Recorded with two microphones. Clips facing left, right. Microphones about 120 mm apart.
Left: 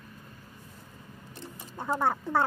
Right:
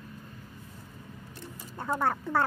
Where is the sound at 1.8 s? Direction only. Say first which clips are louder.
Left 1 dB; 15° left (ahead or behind).